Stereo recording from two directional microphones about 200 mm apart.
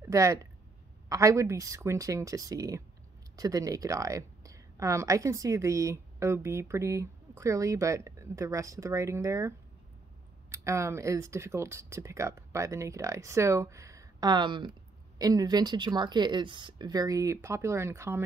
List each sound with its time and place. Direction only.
0.0 s a woman's voice: 15° right (ahead or behind)
10.6 s a woman's voice: 15° right (ahead or behind)